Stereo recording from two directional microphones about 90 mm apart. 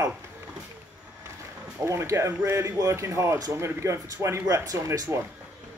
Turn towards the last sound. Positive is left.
turn(degrees=-35)  # may be behind; listen again after turning